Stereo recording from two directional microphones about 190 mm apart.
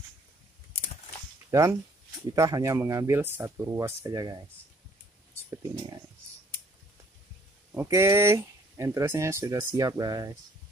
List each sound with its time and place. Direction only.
1.5 s speech: 15° right (ahead or behind)
7.7 s speech: 15° right (ahead or behind)